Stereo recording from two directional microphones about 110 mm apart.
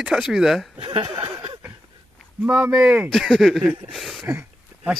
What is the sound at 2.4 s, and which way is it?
Speech, 20° right (ahead or behind).